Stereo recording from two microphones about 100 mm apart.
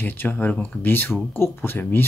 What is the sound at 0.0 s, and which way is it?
Speech, 20° left (ahead or behind).